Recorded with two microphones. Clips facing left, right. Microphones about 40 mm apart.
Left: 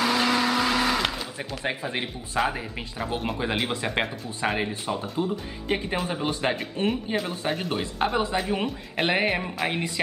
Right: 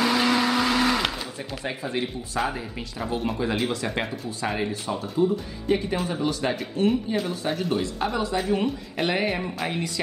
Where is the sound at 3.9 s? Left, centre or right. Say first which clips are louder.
Left 1 dB; left.